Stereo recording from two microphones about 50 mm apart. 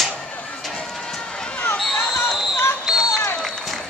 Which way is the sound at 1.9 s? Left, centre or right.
Left.